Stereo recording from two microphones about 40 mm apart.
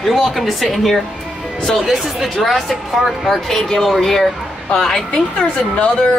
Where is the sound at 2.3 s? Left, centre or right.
Centre.